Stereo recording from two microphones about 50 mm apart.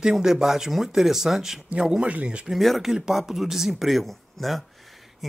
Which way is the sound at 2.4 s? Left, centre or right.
Centre.